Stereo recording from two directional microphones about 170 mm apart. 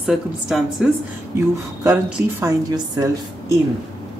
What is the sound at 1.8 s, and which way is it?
Speech, 15° right (ahead or behind).